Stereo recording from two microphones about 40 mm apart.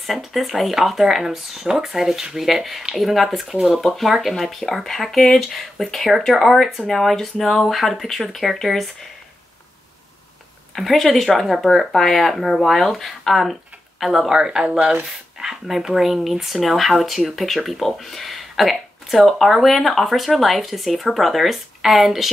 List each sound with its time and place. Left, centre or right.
0.0 s speech: centre
10.8 s speech: centre
14.3 s speech: centre
15.3 s speech: centre